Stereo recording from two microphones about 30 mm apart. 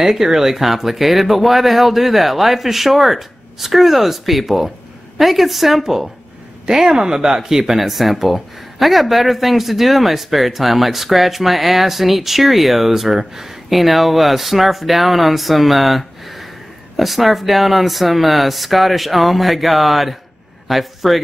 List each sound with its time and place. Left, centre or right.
0.0 s a man's voice: centre